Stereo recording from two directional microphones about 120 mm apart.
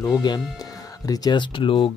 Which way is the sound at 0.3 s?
40° left (ahead or behind).